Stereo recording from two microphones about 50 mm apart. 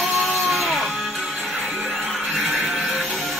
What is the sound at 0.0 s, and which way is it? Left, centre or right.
Music, centre.